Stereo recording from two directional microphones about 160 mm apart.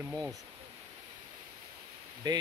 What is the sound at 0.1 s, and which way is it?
Speech, 20° right (ahead or behind).